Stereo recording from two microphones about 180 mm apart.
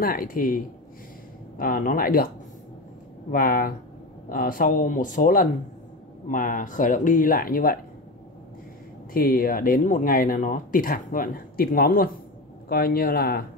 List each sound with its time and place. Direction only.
0.0 s speech: 55° left (ahead or behind)
1.6 s speech: 50° left (ahead or behind)
3.3 s speech: 50° left (ahead or behind)
9.1 s speech: 55° left (ahead or behind)